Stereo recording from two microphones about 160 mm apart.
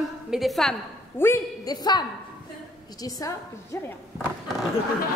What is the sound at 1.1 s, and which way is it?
Speech, 15° left (ahead or behind).